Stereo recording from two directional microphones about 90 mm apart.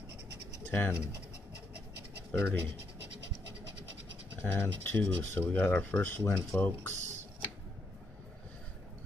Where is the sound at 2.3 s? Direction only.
25° left (ahead or behind).